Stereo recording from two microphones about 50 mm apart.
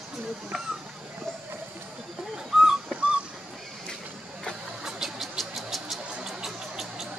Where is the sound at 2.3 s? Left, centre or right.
Centre.